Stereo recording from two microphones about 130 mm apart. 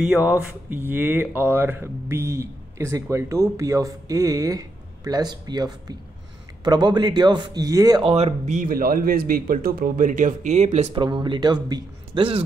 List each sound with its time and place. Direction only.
0.5 s speech: 15° right (ahead or behind)
8.0 s speech: 50° right (ahead or behind)
11.0 s speech: 35° right (ahead or behind)